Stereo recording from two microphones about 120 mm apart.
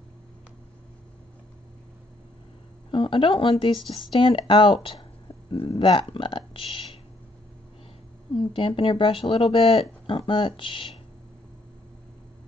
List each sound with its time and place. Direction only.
2.9 s speech: 45° left (ahead or behind)
8.4 s speech: 45° left (ahead or behind)